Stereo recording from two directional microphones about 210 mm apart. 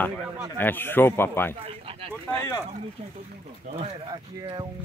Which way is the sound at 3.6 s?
25° right (ahead or behind).